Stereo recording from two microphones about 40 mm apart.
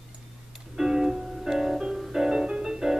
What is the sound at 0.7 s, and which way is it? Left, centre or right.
Music, centre.